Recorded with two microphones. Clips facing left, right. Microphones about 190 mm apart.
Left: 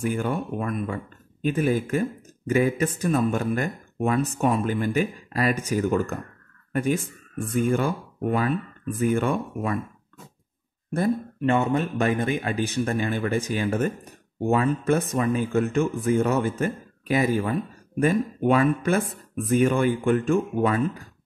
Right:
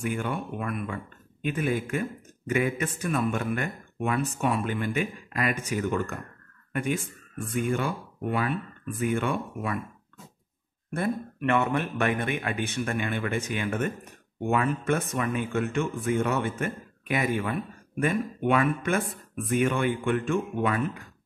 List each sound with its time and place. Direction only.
0.0 s speech: 40° left (ahead or behind)
10.9 s speech: 35° left (ahead or behind)